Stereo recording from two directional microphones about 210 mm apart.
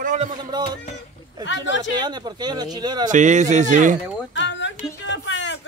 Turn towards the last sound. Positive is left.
turn(degrees=60)  # may be behind; listen again after turning